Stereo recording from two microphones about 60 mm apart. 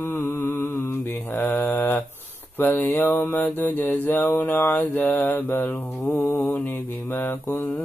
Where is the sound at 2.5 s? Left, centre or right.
Left.